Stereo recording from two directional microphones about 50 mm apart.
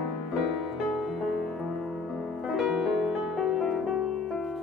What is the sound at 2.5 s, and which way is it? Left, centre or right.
Music, centre.